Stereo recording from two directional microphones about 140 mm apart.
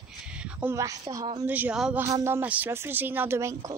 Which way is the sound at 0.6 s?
20° right (ahead or behind).